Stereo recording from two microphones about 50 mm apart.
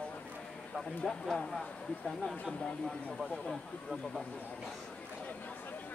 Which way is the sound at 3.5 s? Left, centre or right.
Centre.